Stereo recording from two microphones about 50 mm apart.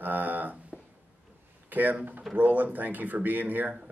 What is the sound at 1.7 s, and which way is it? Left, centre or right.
Speech, right.